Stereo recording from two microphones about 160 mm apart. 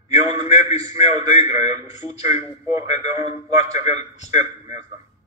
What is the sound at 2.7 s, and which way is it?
Speech, 45° left (ahead or behind).